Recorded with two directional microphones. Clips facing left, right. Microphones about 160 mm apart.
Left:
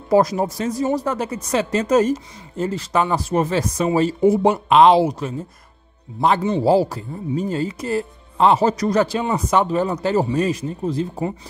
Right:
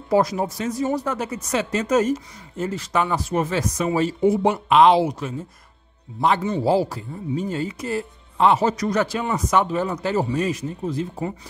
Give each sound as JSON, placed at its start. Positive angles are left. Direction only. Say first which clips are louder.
{"t": 0.1, "sound": "speech", "louder": "left 3 dB", "side_deg": 40}